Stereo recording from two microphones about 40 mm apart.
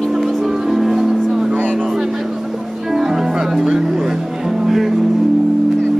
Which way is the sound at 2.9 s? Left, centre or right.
Centre.